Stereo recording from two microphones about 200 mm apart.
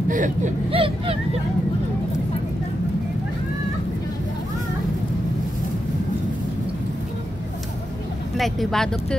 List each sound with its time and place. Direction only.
0.1 s speech: 40° right (ahead or behind)
0.7 s speech: 25° right (ahead or behind)
8.4 s speech: centre (ahead or behind)